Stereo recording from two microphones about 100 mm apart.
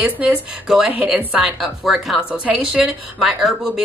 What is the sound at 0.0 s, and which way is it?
A woman's voice, 10° right (ahead or behind).